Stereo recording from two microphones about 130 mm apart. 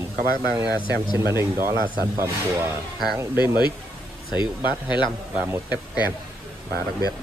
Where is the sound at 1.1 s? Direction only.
20° right (ahead or behind).